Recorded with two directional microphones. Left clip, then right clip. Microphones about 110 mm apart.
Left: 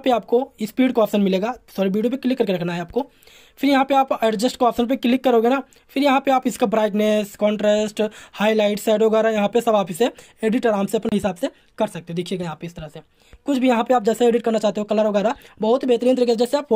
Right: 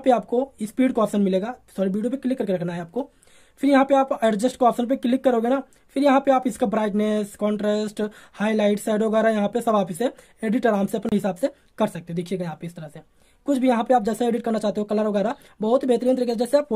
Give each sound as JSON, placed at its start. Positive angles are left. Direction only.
{"t": 0.0, "sound": "speech", "side_deg": 20}